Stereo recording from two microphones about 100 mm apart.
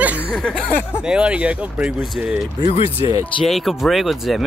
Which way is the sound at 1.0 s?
10° right (ahead or behind).